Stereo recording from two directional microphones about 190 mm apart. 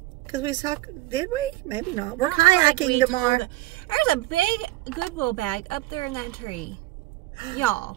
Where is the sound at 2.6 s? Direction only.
40° left (ahead or behind).